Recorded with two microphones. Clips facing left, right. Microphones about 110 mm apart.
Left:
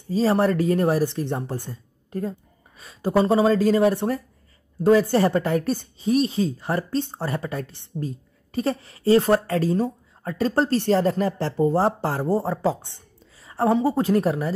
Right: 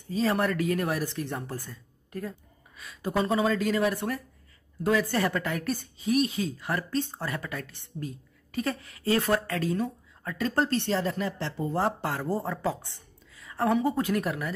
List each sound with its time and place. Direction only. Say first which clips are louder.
0.1 s speech: left 6 dB; 30° left (ahead or behind)